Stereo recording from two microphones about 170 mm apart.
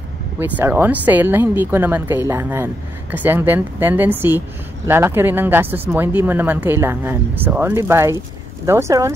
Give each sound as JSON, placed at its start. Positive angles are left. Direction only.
{"t": 0.4, "sound": "speech", "side_deg": -10}